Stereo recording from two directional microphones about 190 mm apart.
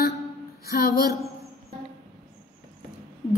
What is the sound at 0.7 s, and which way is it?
Speech, 55° left (ahead or behind).